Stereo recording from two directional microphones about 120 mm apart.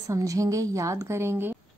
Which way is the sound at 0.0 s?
25° right (ahead or behind).